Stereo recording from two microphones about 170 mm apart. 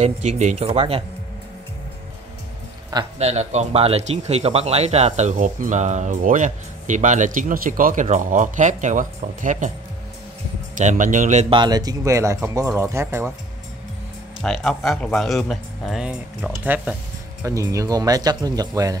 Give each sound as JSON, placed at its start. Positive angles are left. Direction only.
{"t": 0.0, "sound": "speech", "side_deg": -40}
{"t": 3.2, "sound": "speech", "side_deg": -40}
{"t": 10.8, "sound": "speech", "side_deg": -45}
{"t": 11.5, "sound": "speech", "side_deg": -25}
{"t": 14.4, "sound": "speech", "side_deg": 0}